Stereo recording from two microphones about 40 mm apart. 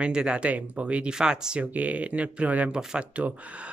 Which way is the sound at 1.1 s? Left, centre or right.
Centre.